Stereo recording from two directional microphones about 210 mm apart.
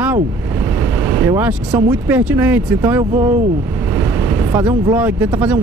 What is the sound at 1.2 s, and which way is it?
Speech, 10° right (ahead or behind).